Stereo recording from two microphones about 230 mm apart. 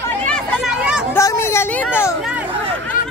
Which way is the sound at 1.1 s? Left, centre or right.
Centre.